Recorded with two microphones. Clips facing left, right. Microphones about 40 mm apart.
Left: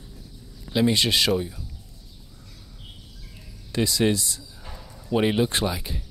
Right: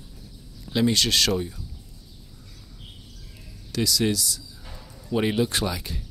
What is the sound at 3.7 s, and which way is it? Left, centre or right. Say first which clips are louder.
Speech: left 2 dB; left.